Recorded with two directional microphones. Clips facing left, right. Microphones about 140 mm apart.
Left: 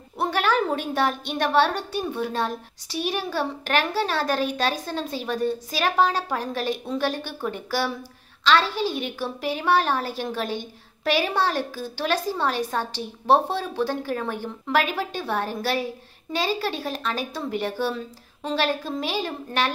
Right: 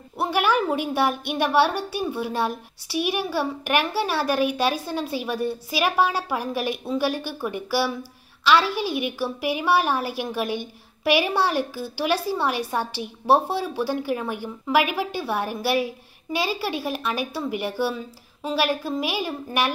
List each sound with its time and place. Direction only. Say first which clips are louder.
0.2 s a woman's voice: right 1 dB; 10° right (ahead or behind)